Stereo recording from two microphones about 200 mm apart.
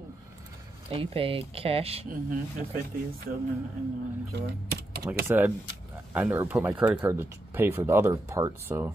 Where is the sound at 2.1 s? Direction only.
45° right (ahead or behind).